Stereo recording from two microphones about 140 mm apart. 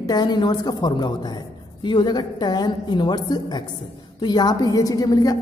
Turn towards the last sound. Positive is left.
turn(degrees=25)  # may be behind; listen again after turning